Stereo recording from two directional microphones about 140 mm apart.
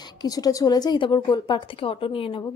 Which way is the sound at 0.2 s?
25° left (ahead or behind).